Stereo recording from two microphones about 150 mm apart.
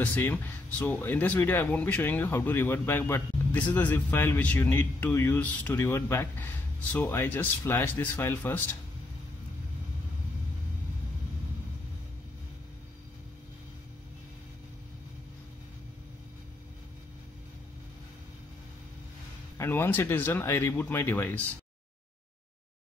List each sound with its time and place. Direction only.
0.0 s speech: 10° left (ahead or behind)
19.5 s speech: 15° left (ahead or behind)